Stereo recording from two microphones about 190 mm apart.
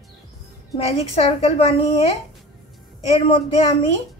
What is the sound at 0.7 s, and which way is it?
A woman's voice, 30° left (ahead or behind).